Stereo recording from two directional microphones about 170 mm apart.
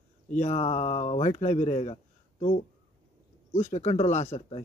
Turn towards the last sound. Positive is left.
turn(degrees=40)  # may be behind; listen again after turning